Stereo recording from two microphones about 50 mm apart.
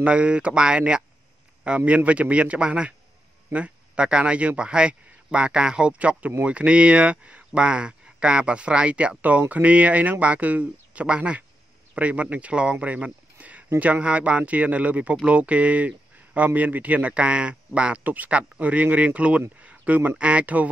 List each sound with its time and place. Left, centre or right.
0.0 s speech: right
12.7 s a sound: right
13.7 s speech: right
18.0 s speech: right
19.6 s a sound: right
20.2 s speech: right